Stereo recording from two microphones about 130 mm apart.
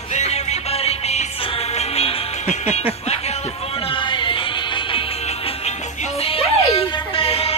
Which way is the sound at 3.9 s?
40° left (ahead or behind).